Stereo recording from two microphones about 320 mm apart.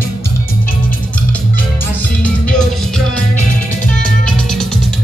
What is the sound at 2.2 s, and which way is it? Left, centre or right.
Music, centre.